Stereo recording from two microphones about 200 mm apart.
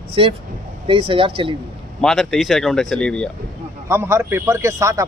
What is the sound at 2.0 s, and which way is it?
Speech, centre (ahead or behind).